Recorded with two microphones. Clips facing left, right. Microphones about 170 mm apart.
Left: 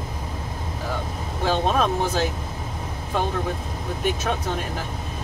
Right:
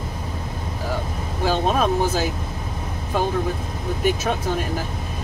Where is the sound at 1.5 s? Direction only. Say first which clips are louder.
Right 1 dB; 5° right (ahead or behind).